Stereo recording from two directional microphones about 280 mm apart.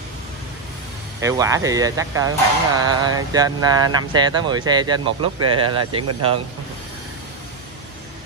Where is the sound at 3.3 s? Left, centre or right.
Centre.